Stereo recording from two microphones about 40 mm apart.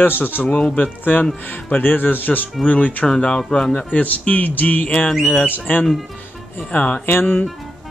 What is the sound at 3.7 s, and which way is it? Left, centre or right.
Speech, left.